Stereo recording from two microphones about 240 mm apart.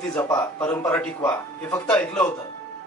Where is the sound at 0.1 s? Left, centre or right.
Centre.